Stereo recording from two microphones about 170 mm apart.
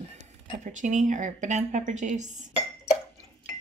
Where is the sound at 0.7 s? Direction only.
45° right (ahead or behind).